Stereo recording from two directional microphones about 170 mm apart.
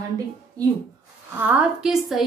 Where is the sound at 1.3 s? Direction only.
5° right (ahead or behind).